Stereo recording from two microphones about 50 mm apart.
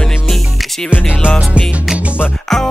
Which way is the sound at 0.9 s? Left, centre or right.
Left.